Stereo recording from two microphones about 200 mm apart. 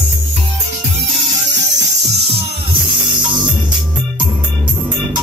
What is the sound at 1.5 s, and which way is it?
Music, 60° right (ahead or behind).